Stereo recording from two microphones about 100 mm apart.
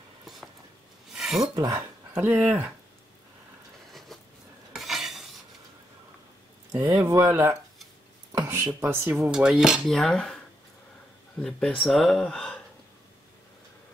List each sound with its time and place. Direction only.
1.1 s filing: centre (ahead or behind)
1.5 s speech: 45° right (ahead or behind)
2.1 s speech: 20° right (ahead or behind)
4.7 s cutlery: centre (ahead or behind)
6.8 s speech: 20° right (ahead or behind)
7.1 s speech: 30° right (ahead or behind)
8.6 s speech: 20° right (ahead or behind)
9.3 s speech: 5° right (ahead or behind)
11.4 s speech: 5° left (ahead or behind)